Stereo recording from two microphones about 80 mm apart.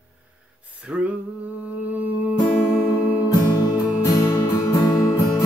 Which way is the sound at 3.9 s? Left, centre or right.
Left.